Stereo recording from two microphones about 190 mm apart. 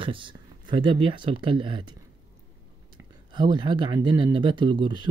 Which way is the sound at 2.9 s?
25° right (ahead or behind).